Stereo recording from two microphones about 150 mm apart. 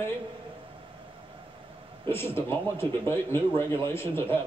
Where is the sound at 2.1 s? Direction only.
15° left (ahead or behind).